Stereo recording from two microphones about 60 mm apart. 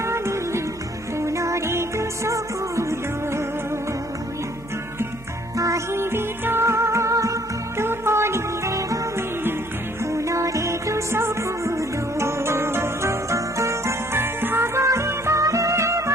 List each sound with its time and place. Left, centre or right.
0.0 s music: right
5.9 s music: right
7.7 s music: right
10.1 s music: right